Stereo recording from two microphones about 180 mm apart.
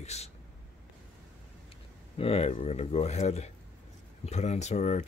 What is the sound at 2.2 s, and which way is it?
Speech, 35° left (ahead or behind).